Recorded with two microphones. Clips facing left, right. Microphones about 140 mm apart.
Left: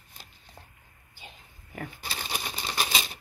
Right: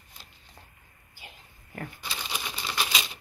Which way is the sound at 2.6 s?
40° left (ahead or behind).